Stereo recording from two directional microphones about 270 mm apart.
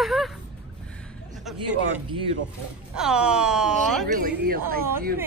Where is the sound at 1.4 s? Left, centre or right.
Centre.